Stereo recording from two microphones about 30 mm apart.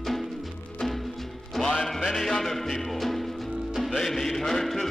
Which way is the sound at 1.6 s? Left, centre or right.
Centre.